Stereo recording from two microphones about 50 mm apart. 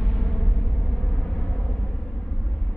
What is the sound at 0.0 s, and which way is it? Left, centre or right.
Vehicle, centre.